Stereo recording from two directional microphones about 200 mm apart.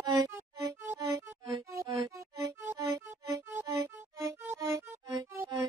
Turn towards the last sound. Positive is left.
turn(degrees=-15)  # may be behind; listen again after turning